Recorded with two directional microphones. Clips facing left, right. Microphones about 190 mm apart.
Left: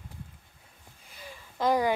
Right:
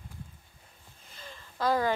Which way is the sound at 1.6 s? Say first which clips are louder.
Left 2 dB; 15° left (ahead or behind).